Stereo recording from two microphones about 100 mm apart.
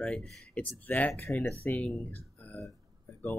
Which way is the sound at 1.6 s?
15° left (ahead or behind).